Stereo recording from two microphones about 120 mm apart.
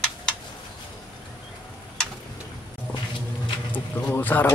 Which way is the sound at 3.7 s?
15° left (ahead or behind).